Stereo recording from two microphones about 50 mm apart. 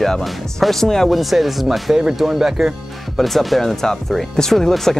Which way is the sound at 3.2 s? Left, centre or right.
Centre.